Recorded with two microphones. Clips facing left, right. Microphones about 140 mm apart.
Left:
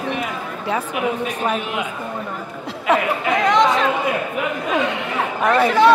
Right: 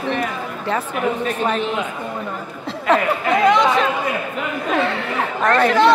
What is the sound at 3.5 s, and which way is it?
Chatter, 5° right (ahead or behind).